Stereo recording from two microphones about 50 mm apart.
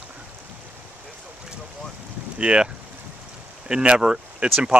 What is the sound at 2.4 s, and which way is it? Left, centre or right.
Speech, right.